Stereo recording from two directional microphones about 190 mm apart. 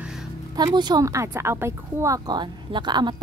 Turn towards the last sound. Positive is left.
turn(degrees=-25)  # may be behind; listen again after turning